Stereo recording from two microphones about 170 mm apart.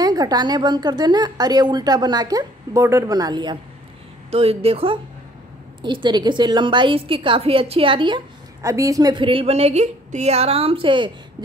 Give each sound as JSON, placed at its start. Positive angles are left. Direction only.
{"t": 0.0, "sound": "a woman's voice", "side_deg": -25}
{"t": 4.3, "sound": "a woman's voice", "side_deg": -35}
{"t": 8.6, "sound": "a woman's voice", "side_deg": -20}